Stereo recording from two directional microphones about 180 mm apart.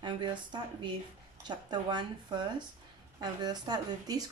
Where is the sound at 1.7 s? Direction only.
25° right (ahead or behind).